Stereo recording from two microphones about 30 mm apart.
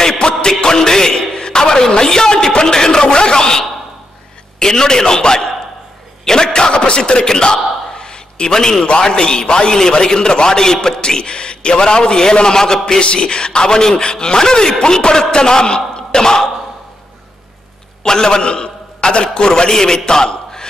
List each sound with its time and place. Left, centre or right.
0.2 s music: left
0.7 s a sound: centre
2.6 s a man's voice: left
13.0 s a man's voice: left
18.0 s a man's voice: left
19.7 s a man's voice: centre